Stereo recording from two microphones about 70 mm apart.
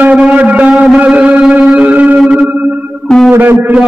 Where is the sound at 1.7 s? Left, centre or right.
Centre.